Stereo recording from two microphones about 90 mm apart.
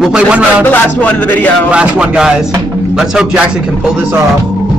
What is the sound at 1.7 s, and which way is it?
A man's voice, 10° right (ahead or behind).